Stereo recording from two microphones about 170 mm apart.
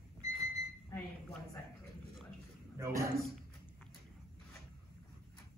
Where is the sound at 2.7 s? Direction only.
15° right (ahead or behind).